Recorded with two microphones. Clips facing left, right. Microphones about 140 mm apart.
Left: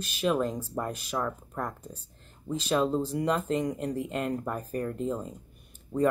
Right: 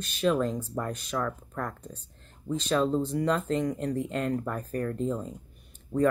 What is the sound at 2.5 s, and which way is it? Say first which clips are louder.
Speech: right 1 dB; 5° left (ahead or behind).